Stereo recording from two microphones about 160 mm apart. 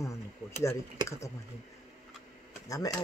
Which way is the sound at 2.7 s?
20° left (ahead or behind).